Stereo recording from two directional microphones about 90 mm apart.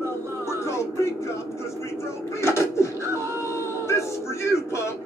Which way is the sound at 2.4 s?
30° left (ahead or behind).